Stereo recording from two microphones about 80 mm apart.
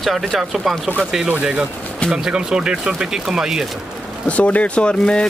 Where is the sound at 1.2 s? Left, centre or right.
Centre.